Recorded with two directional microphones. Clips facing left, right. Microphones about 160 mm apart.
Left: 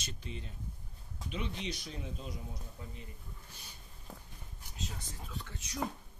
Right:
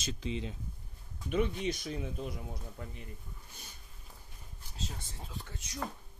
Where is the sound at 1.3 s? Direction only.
50° right (ahead or behind).